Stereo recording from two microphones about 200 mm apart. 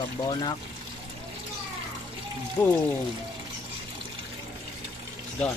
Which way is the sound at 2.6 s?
15° left (ahead or behind).